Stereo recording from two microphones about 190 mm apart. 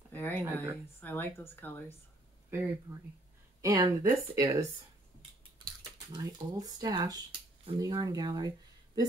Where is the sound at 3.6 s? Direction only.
20° right (ahead or behind).